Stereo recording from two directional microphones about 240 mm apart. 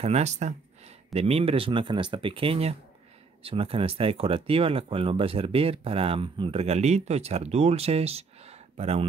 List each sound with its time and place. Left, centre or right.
0.0 s speech: right